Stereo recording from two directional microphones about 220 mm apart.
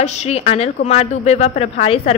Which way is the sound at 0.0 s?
30° left (ahead or behind).